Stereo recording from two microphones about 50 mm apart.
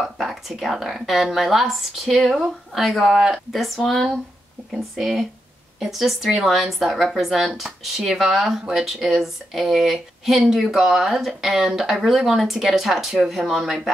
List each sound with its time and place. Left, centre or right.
0.0 s speech: centre